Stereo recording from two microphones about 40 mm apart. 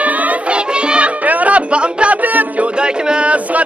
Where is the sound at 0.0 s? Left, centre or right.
Right.